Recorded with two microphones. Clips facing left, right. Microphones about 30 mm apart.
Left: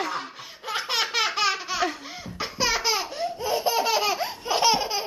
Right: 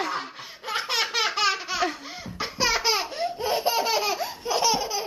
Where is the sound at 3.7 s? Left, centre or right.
Centre.